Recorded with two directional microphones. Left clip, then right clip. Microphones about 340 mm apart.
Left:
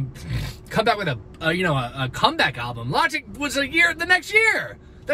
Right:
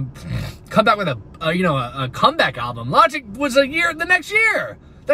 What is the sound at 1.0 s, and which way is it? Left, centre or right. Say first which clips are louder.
A man's voice: right 2 dB; centre.